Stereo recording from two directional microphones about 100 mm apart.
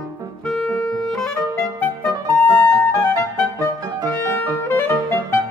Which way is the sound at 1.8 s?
15° left (ahead or behind).